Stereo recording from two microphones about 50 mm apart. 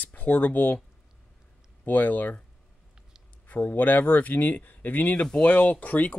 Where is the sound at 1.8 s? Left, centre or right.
Left.